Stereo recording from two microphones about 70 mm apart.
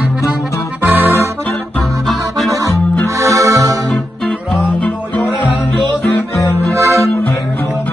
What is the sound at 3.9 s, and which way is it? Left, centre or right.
Music, centre.